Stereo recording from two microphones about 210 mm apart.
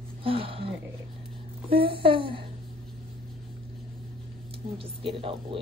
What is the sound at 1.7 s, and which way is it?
Speech, 25° right (ahead or behind).